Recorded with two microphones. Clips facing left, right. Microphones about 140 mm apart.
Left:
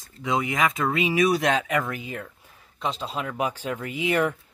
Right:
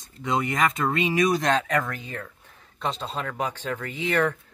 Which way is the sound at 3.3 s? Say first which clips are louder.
Left 2 dB; 10° left (ahead or behind).